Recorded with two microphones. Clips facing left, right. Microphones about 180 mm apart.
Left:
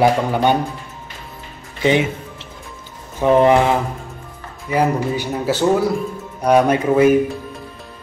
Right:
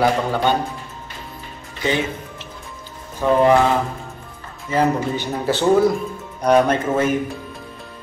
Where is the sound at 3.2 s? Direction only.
20° left (ahead or behind).